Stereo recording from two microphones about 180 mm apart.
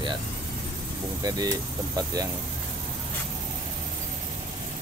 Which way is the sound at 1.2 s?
20° right (ahead or behind).